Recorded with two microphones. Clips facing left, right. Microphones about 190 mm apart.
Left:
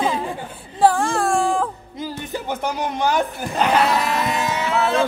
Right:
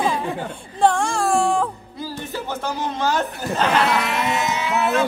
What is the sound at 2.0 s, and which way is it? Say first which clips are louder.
Music: left 1 dB; 15° left (ahead or behind).